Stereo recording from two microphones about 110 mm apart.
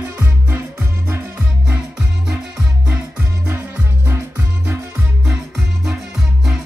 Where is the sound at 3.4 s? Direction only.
20° right (ahead or behind).